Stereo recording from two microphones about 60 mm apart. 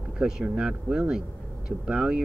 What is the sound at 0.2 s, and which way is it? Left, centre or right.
Speech, centre.